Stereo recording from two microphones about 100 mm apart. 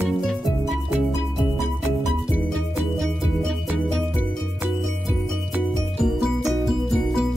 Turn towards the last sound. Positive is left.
turn(degrees=-5)  # may be behind; listen again after turning